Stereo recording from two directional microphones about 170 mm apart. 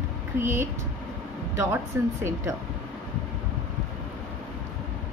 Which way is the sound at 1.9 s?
15° right (ahead or behind).